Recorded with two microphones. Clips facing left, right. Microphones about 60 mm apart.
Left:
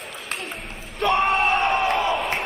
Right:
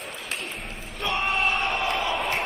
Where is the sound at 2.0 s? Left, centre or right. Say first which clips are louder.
Left 3 dB; left.